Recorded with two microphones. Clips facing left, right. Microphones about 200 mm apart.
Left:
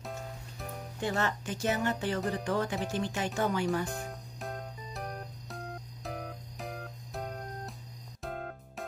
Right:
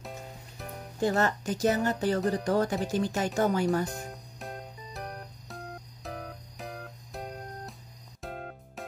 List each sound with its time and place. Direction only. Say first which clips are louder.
1.0 s speech: right 5 dB; 40° right (ahead or behind)
3.9 s music: left 1 dB; centre (ahead or behind)